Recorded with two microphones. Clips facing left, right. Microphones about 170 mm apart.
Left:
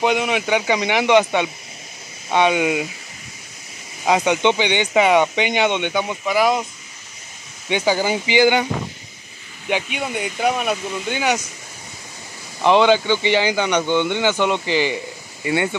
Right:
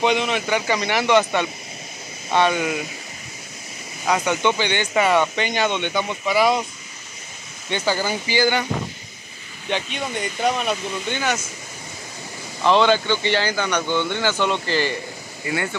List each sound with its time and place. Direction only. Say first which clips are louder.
0.0 s speech: left 1 dB; 10° left (ahead or behind)
4.0 s speech: left 3 dB; 20° left (ahead or behind); by 6.6 s 5° left (ahead or behind)
7.7 s speech: left 4 dB; 15° left (ahead or behind)
9.7 s speech: left 2 dB; 10° left (ahead or behind)
12.6 s speech: left 3 dB; 15° left (ahead or behind)